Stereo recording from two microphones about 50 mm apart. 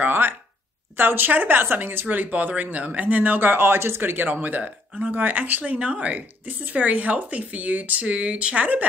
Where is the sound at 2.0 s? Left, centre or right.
Right.